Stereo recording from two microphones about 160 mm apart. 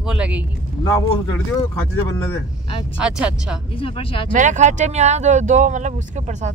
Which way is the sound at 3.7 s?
35° left (ahead or behind).